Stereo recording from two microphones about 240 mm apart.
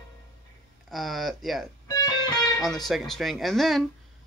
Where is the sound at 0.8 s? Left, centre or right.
Centre.